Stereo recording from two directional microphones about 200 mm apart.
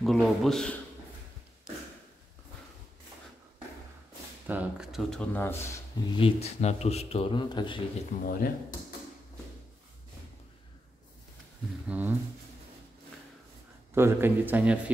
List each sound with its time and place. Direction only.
0.0 s a man's voice: centre (ahead or behind)
4.5 s speech: 5° right (ahead or behind); by 5.7 s 10° left (ahead or behind)
6.1 s a man's voice: 30° left (ahead or behind)
8.3 s speech: 50° left (ahead or behind)
11.9 s a man's voice: 10° right (ahead or behind)
13.9 s a man's voice: 10° right (ahead or behind)